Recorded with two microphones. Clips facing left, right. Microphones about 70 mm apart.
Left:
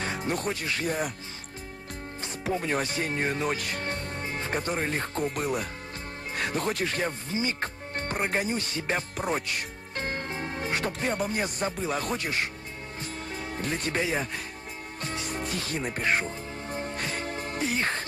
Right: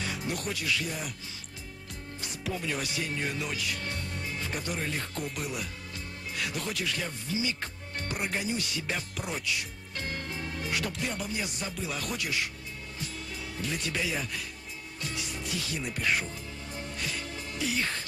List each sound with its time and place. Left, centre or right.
0.0 s speech: left
2.5 s speech: left
15.0 s music: left